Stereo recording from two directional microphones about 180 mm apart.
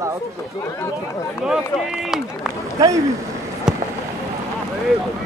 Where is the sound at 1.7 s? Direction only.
Centre (ahead or behind).